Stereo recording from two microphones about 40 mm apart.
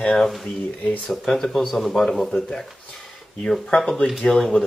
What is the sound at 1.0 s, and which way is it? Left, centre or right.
Speech, centre.